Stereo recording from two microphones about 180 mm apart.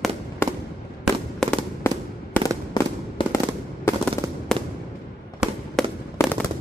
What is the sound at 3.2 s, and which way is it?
Fireworks, 30° left (ahead or behind).